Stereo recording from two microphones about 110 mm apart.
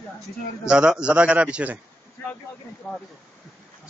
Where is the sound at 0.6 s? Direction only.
5° right (ahead or behind).